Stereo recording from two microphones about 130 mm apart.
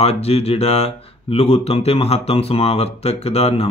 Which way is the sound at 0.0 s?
50° left (ahead or behind).